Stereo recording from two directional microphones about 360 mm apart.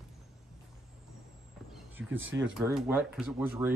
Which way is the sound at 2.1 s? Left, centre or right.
Right.